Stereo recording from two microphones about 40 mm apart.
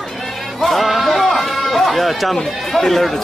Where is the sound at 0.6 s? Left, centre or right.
Centre.